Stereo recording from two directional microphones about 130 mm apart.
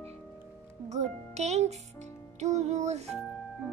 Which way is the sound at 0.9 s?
60° right (ahead or behind).